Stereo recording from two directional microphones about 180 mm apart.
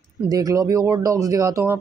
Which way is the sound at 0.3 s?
20° right (ahead or behind).